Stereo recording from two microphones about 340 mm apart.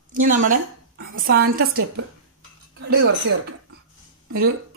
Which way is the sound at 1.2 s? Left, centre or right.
Right.